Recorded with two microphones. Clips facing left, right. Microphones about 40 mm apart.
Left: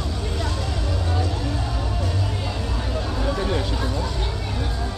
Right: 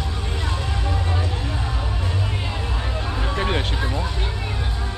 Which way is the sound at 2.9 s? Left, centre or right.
Right.